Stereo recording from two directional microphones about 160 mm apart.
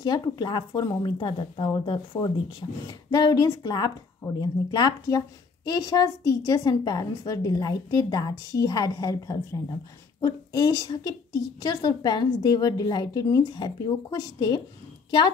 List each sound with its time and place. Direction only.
0.0 s a woman's voice: 25° left (ahead or behind)